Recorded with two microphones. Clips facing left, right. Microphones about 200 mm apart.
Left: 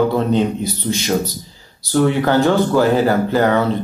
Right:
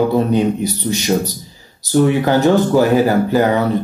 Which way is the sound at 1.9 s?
15° right (ahead or behind).